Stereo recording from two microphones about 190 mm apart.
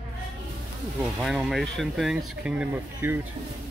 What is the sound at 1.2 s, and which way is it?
Speech, 5° right (ahead or behind).